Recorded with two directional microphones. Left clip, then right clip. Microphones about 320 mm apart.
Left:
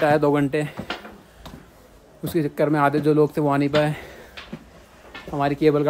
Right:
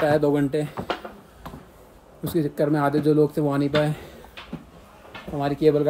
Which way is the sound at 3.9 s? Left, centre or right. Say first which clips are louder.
Left 2 dB; centre.